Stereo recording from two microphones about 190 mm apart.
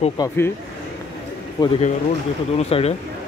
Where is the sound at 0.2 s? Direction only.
20° left (ahead or behind).